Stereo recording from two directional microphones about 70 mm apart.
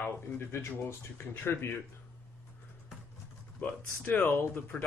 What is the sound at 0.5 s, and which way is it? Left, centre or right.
Speech, left.